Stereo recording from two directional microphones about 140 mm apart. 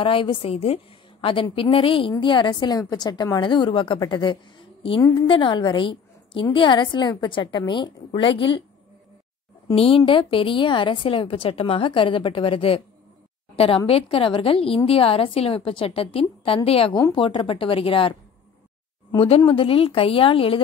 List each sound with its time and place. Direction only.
0.0 s a woman's voice: 40° left (ahead or behind)
9.8 s a woman's voice: 40° left (ahead or behind)
16.9 s a woman's voice: 30° left (ahead or behind)
19.1 s a woman's voice: 40° left (ahead or behind)